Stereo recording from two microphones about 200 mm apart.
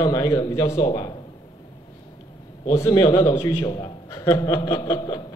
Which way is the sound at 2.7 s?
20° left (ahead or behind).